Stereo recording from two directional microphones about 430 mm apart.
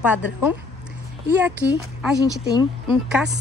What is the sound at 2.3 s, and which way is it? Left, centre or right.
Speech, centre.